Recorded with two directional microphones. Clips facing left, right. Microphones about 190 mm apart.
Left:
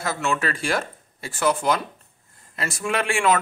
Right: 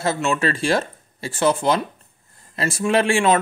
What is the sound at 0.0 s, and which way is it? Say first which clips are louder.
Speech: right 4 dB; 25° right (ahead or behind).